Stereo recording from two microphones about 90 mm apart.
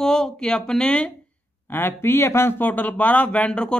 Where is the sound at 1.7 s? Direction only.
25° left (ahead or behind).